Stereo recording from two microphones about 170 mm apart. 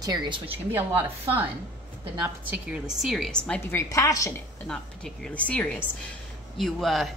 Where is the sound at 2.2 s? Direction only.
10° right (ahead or behind); by 4.4 s 20° left (ahead or behind).